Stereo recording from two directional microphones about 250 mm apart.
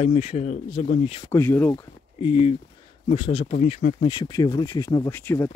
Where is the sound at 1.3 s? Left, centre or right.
Centre.